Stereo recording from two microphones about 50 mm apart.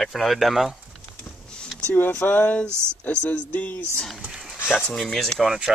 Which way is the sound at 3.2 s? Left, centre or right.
Left.